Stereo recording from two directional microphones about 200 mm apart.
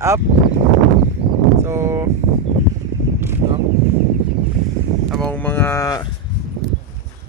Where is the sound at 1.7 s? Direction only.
15° right (ahead or behind).